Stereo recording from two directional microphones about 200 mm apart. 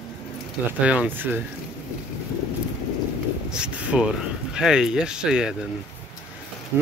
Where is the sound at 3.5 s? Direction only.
5° right (ahead or behind).